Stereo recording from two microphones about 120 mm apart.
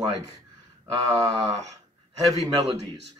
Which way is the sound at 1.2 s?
30° right (ahead or behind).